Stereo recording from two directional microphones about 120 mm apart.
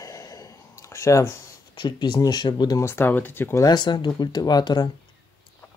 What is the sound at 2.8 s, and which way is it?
Speech, 20° left (ahead or behind).